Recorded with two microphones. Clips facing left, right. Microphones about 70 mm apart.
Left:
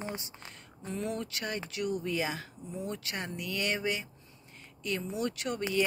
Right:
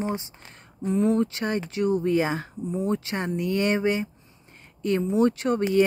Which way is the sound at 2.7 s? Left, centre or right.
Right.